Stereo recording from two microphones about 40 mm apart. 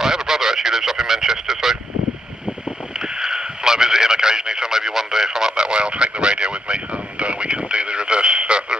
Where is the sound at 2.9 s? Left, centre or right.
Centre.